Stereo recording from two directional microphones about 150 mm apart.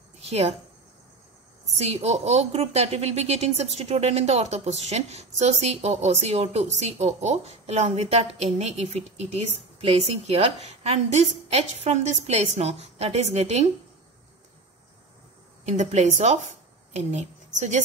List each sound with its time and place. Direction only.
0.2 s speech: 45° right (ahead or behind)
1.8 s a woman's voice: 45° right (ahead or behind)
15.6 s a woman's voice: 50° right (ahead or behind)